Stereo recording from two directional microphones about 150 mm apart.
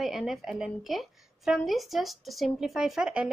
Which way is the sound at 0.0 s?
Centre (ahead or behind).